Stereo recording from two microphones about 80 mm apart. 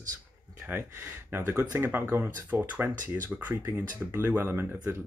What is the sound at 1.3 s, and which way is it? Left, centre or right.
Speech, right.